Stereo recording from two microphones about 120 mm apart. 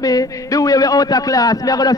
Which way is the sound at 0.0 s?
30° left (ahead or behind).